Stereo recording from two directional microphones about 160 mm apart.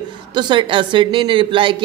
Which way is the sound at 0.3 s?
30° right (ahead or behind).